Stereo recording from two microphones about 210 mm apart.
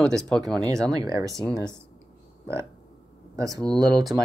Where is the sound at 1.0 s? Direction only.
15° right (ahead or behind).